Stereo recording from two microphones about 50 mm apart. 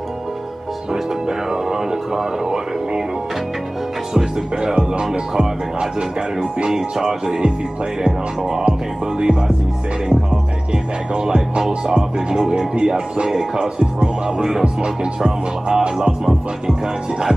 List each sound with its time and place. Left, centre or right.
1.5 s a sound: centre
4.1 s music: centre
10.7 s music: centre